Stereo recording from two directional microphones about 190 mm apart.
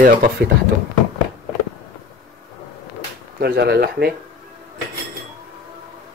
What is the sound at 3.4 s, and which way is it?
Speech, 55° right (ahead or behind).